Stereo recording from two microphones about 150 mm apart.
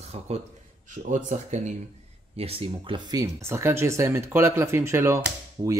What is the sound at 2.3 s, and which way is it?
Speech, 40° right (ahead or behind).